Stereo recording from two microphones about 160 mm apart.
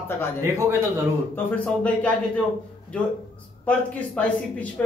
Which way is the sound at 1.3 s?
10° left (ahead or behind).